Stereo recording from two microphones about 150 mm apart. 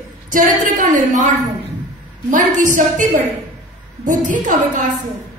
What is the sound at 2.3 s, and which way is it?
A woman's voice, 60° right (ahead or behind).